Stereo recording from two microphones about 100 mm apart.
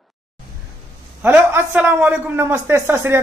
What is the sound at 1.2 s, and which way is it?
A man's voice, 25° right (ahead or behind).